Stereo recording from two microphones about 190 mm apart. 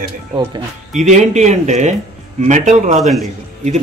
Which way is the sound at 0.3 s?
20° right (ahead or behind).